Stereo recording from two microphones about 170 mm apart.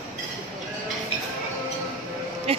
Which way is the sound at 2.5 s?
35° right (ahead or behind).